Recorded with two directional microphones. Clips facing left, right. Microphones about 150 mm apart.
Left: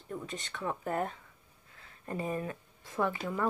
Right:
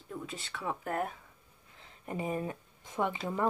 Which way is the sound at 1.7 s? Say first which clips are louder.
Even; 15° right (ahead or behind).